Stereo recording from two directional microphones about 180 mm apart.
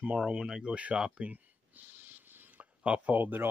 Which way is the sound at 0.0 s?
5° right (ahead or behind).